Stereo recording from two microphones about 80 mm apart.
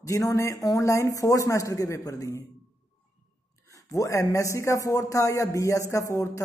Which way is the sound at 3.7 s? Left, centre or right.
Left.